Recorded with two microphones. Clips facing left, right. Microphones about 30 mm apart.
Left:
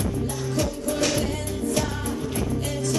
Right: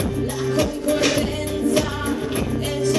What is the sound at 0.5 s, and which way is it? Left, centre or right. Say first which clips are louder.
Music: right 7 dB; right.